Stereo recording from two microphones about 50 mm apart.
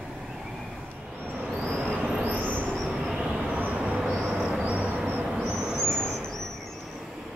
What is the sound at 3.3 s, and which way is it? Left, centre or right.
Vehicle, right.